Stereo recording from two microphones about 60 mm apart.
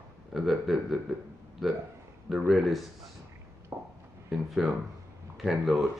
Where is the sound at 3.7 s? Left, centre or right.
Centre.